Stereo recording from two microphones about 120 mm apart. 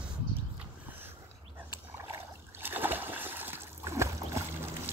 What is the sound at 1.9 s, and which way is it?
Splash, 20° right (ahead or behind).